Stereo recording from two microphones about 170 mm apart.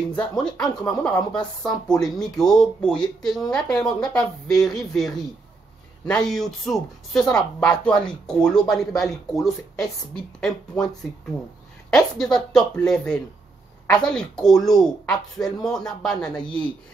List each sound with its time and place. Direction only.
0.1 s speech: 5° left (ahead or behind)
11.9 s speech: centre (ahead or behind)
15.4 s speech: 20° left (ahead or behind)
15.8 s speech: 5° left (ahead or behind)